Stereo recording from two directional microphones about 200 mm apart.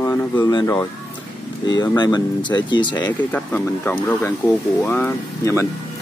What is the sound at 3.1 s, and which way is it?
Speech, 10° left (ahead or behind).